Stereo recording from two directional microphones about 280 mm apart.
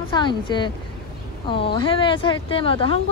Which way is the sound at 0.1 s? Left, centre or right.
Centre.